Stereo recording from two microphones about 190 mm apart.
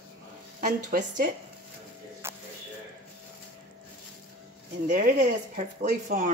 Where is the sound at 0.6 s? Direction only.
45° right (ahead or behind).